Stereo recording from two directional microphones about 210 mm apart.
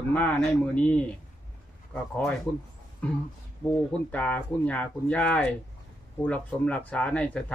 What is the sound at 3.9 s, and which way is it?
Speech, 5° left (ahead or behind).